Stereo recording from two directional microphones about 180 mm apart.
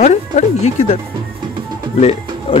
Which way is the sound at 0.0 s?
40° left (ahead or behind).